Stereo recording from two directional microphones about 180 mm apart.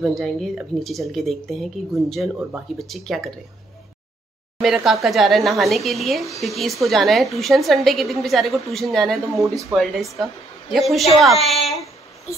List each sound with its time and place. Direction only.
0.0 s a woman's voice: centre (ahead or behind)
4.6 s a woman's voice: centre (ahead or behind)
9.4 s speech: 15° right (ahead or behind)
9.8 s a woman's voice: centre (ahead or behind)